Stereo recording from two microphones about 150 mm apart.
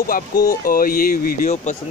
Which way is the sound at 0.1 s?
70° left (ahead or behind).